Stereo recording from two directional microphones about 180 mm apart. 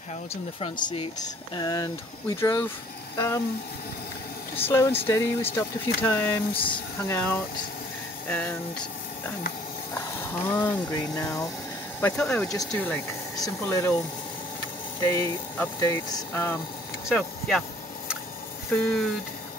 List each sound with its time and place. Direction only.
0.3 s speech: 35° left (ahead or behind)
1.5 s speech: 20° left (ahead or behind)
4.6 s speech: 15° left (ahead or behind)
6.5 s speech: 30° left (ahead or behind)
7.1 s speech: 10° left (ahead or behind)
9.9 s speech: 10° left (ahead or behind)
12.0 s speech: 5° left (ahead or behind)
15.0 s speech: 15° left (ahead or behind)
17.1 s a sound: centre (ahead or behind)
18.7 s speech: 5° left (ahead or behind)